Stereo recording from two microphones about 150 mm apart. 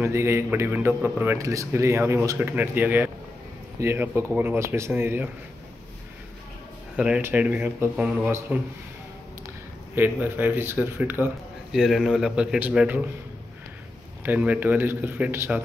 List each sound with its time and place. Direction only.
0.0 s a man's voice: 15° right (ahead or behind)
7.0 s a man's voice: 10° right (ahead or behind)
9.9 s a man's voice: 15° right (ahead or behind)
11.7 s a man's voice: centre (ahead or behind)
14.2 s a man's voice: 10° right (ahead or behind)